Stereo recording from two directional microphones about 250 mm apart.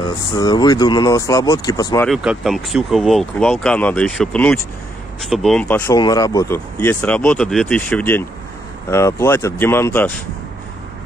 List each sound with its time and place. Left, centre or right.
0.0 s speech: centre
2.0 s speech: centre